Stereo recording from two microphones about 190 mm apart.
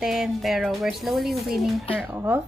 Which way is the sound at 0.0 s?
Centre (ahead or behind).